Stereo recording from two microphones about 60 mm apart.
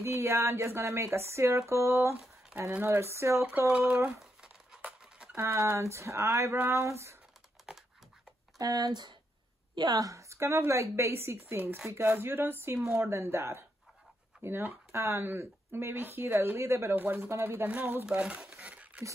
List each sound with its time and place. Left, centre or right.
0.0 s speech: right
3.8 s speech: right
4.2 s a sound: centre
5.3 s speech: right
7.7 s dog: centre
8.5 s speech: right
9.9 s a woman's voice: right
14.9 s speech: right
16.9 s speech: right
17.3 s speech: right
18.0 s speech: centre
18.4 s a sound: centre
18.7 s a sound: right